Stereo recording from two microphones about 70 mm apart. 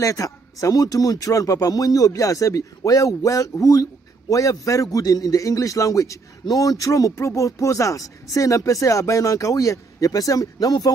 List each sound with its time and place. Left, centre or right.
0.0 s speech: left
6.4 s speech: left